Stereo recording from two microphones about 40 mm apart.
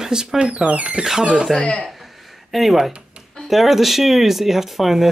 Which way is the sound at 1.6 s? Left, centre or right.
Left.